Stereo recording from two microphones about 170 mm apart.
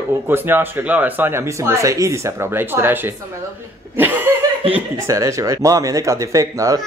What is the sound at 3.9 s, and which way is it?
Chuckle, 10° right (ahead or behind).